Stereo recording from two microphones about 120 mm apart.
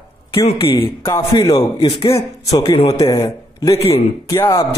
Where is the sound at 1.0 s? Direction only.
30° left (ahead or behind).